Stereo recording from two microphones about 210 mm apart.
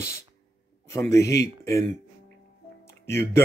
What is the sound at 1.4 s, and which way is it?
Speech, 15° left (ahead or behind).